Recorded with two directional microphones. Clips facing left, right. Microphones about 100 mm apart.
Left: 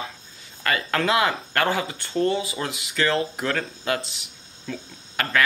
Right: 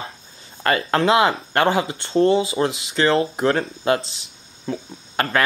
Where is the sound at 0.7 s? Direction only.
30° right (ahead or behind).